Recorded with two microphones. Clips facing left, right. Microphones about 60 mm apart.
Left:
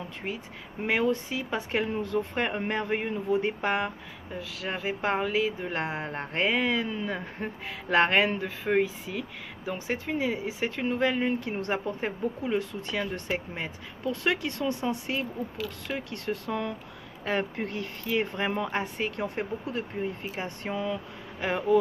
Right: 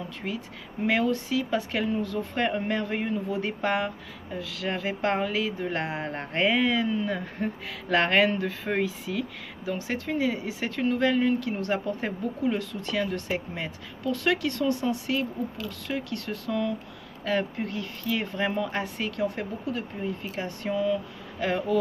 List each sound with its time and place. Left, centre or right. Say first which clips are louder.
0.8 s a woman's voice: right 1 dB; centre
9.7 s a woman's voice: right 1 dB; centre
18.7 s a woman's voice: even; left
21.4 s a woman's voice: even; centre